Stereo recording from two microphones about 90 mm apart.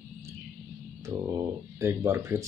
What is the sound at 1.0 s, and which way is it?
Speech, 30° right (ahead or behind).